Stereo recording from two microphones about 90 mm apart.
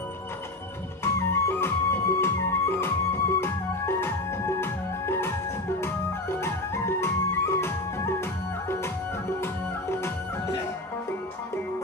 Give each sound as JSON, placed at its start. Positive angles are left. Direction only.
{"t": 1.0, "sound": "music", "side_deg": 25}
{"t": 6.4, "sound": "music", "side_deg": 30}
{"t": 9.4, "sound": "music", "side_deg": 30}